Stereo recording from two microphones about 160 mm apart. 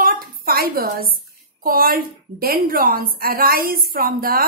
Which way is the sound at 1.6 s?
65° right (ahead or behind).